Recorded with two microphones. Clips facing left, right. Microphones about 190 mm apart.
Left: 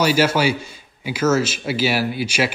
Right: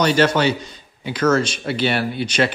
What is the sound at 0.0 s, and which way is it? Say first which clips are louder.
A man's voice: right 1 dB; 5° left (ahead or behind).